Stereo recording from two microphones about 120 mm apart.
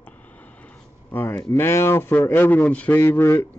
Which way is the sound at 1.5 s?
20° left (ahead or behind).